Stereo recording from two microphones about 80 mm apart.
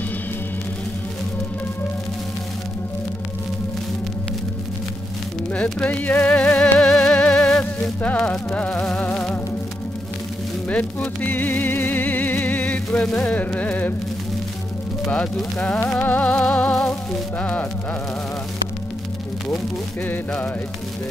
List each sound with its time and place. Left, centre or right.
5.5 s speech: centre
8.5 s music: centre
10.7 s music: centre
15.0 s music: centre